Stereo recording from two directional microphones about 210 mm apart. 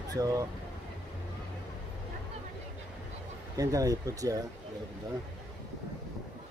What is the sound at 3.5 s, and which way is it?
Speech, 15° right (ahead or behind).